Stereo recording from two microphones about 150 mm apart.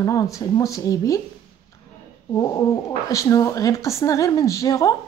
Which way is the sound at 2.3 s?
20° left (ahead or behind).